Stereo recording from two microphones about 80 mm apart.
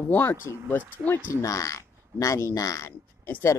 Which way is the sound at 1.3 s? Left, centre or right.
Left.